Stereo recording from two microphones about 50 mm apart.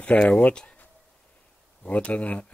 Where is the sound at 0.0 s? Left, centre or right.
Left.